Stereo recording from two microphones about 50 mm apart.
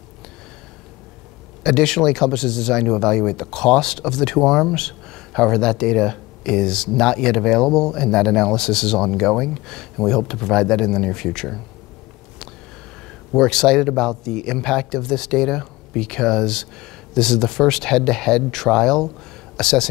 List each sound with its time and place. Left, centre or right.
1.6 s speech: centre
13.3 s speech: centre